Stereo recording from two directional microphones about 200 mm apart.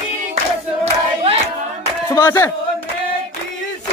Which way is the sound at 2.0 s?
15° left (ahead or behind).